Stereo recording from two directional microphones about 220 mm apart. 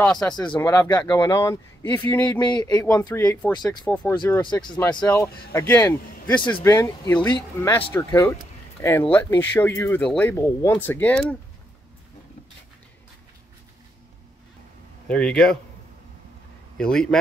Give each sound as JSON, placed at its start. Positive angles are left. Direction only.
{"t": 0.0, "sound": "a man's voice", "side_deg": 5}
{"t": 0.4, "sound": "a man's voice", "side_deg": 15}
{"t": 3.9, "sound": "a man's voice", "side_deg": 5}
{"t": 4.4, "sound": "speech", "side_deg": 20}
{"t": 4.7, "sound": "a man's voice", "side_deg": 10}
{"t": 15.0, "sound": "a man's voice", "side_deg": 5}
{"t": 16.7, "sound": "a man's voice", "side_deg": 5}